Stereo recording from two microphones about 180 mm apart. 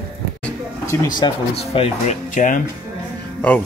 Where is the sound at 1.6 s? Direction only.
35° left (ahead or behind).